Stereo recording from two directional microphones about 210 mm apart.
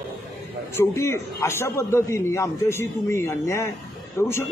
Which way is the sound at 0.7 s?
10° left (ahead or behind).